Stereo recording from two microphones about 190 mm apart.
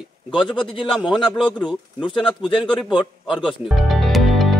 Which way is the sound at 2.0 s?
25° left (ahead or behind).